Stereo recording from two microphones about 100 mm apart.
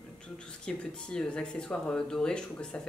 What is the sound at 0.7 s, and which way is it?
Speech, 10° left (ahead or behind).